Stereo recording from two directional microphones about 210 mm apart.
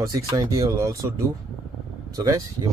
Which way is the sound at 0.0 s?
15° right (ahead or behind).